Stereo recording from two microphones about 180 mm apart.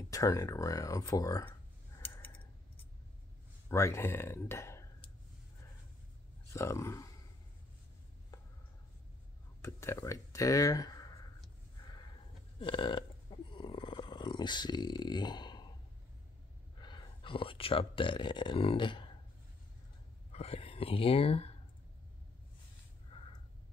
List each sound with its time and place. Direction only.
0.1 s speech: 20° left (ahead or behind)
2.0 s a sound: 10° left (ahead or behind)
3.6 s speech: 15° left (ahead or behind)
6.5 s speech: 15° left (ahead or behind)
8.3 s a sound: 20° left (ahead or behind)
9.6 s speech: 15° left (ahead or behind)
12.5 s burping: 25° left (ahead or behind)
16.8 s speech: 25° left (ahead or behind)
20.3 s speech: 35° left (ahead or behind)